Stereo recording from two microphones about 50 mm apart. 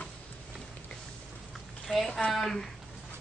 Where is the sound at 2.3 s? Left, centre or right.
Centre.